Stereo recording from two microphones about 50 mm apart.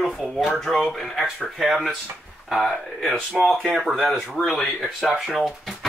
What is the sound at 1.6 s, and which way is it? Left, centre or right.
Speech, centre.